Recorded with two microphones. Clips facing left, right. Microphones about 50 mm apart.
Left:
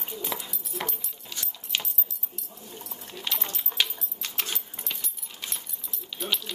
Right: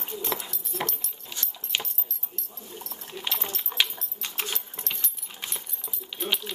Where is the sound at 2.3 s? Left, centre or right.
Centre.